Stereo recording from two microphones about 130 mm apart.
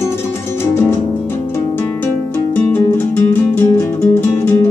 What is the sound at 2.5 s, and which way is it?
Music, 15° left (ahead or behind).